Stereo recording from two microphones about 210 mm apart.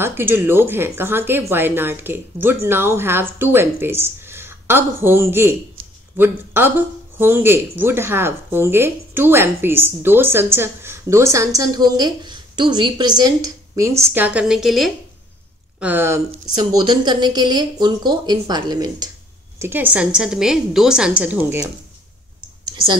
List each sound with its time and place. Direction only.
0.0 s a woman's voice: 10° right (ahead or behind)